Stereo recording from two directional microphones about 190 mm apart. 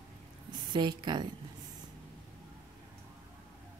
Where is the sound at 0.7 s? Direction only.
25° right (ahead or behind).